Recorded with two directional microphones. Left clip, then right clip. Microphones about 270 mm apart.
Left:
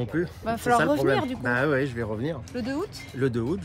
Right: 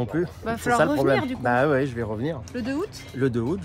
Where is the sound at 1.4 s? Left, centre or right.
Centre.